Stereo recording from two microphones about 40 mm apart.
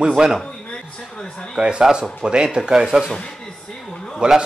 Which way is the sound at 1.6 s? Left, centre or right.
Right.